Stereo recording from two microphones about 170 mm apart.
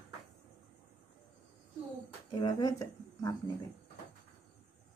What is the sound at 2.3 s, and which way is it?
Speech, 20° left (ahead or behind).